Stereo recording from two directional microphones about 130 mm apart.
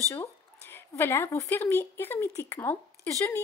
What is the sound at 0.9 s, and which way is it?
Speech, 20° left (ahead or behind).